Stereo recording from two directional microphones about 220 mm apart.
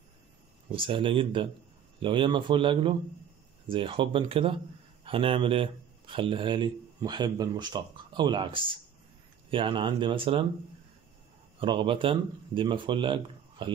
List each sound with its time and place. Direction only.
0.7 s speech: 25° right (ahead or behind)
11.6 s speech: 25° right (ahead or behind)